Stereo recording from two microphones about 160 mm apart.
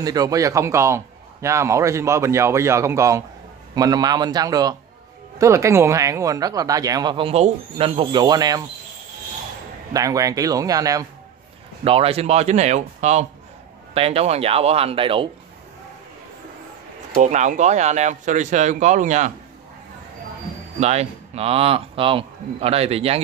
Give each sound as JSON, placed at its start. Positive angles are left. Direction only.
{"t": 0.0, "sound": "a man's voice", "side_deg": -25}
{"t": 9.9, "sound": "speech", "side_deg": -20}
{"t": 11.8, "sound": "a man's voice", "side_deg": -35}
{"t": 17.1, "sound": "speech", "side_deg": -50}
{"t": 20.8, "sound": "a man's voice", "side_deg": -40}